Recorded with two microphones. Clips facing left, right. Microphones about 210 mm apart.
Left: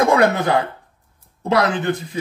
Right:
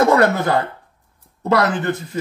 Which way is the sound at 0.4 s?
15° left (ahead or behind).